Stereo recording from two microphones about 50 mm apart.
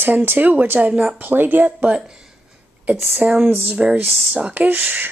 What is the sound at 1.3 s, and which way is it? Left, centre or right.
Speech, right.